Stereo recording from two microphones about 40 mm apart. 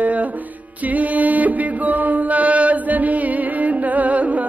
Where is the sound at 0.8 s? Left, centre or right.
Right.